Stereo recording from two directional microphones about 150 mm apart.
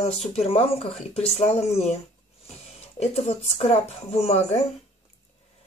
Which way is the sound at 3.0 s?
45° left (ahead or behind).